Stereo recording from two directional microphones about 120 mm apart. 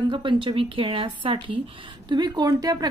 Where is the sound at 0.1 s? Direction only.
40° right (ahead or behind).